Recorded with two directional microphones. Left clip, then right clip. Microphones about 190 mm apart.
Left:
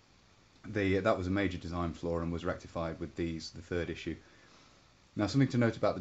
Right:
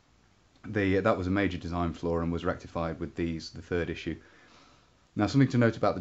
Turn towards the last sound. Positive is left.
turn(degrees=-30)  # may be behind; listen again after turning